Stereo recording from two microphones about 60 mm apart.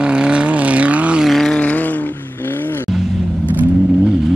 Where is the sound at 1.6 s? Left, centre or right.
Left.